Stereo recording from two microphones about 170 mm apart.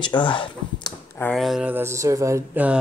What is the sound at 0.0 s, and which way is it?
Speech, 30° left (ahead or behind).